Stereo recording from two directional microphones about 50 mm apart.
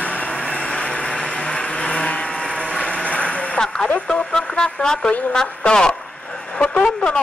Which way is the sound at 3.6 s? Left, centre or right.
Centre.